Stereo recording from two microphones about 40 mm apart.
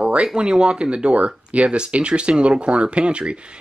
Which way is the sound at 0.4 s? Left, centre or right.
Right.